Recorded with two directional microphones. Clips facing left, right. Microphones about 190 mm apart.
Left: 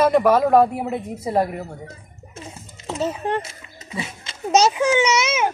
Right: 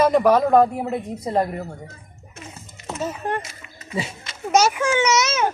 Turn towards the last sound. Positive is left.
turn(degrees=15)  # may be behind; listen again after turning